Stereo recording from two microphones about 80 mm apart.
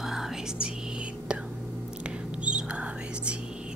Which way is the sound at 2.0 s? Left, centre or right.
Centre.